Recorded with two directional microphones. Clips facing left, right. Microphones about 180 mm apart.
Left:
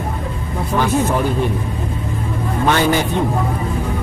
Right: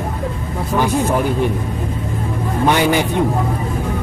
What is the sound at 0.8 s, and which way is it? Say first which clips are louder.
Speech: even; 15° right (ahead or behind).